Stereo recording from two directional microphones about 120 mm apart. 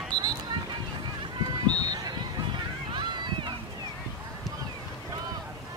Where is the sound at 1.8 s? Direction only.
35° right (ahead or behind).